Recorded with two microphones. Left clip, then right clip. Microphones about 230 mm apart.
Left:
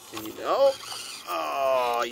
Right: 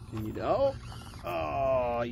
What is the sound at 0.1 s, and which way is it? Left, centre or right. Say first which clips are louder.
Speech: left 3 dB; centre.